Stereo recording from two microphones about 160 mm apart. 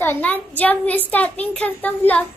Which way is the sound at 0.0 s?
10° left (ahead or behind).